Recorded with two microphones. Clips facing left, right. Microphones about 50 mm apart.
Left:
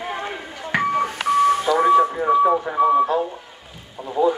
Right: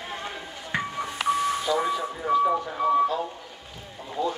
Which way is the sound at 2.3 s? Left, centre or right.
Left.